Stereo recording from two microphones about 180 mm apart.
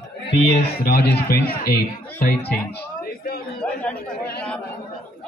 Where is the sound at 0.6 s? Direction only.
60° left (ahead or behind).